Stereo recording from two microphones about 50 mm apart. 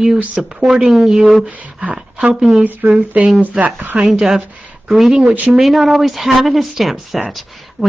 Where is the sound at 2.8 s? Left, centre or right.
Right.